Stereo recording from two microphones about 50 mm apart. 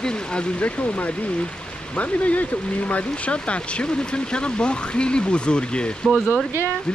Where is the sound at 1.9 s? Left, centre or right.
Left.